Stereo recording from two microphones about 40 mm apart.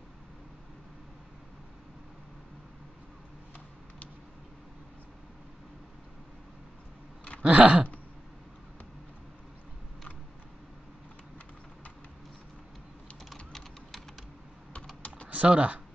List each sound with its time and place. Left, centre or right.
7.4 s a sound: right
13.3 s typing: centre
15.0 s typing: left
15.2 s speech: right